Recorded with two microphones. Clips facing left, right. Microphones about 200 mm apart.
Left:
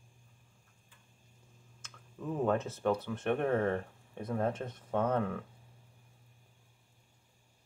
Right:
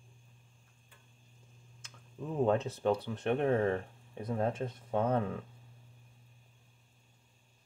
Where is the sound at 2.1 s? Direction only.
20° right (ahead or behind).